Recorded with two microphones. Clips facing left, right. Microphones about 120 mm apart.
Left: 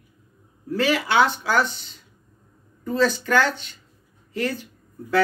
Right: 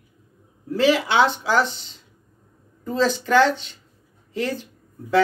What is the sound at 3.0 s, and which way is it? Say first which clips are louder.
Speech: right 7 dB; 25° right (ahead or behind).